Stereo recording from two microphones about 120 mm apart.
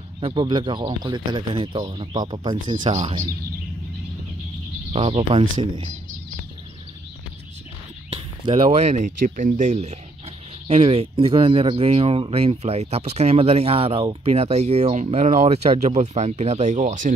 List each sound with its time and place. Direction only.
0.2 s a man's voice: 40° right (ahead or behind)
4.9 s speech: 50° right (ahead or behind)
8.1 s speech: 55° right (ahead or behind); by 9.9 s 75° right (ahead or behind)
10.7 s speech: 60° right (ahead or behind); by 17.1 s 90° right